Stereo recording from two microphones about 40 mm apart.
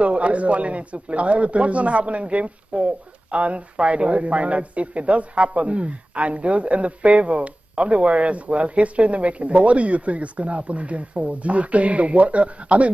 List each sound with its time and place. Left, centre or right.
0.0 s a man's voice: right